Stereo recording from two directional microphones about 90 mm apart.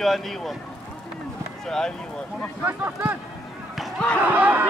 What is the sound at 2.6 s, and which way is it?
Speech, 30° right (ahead or behind).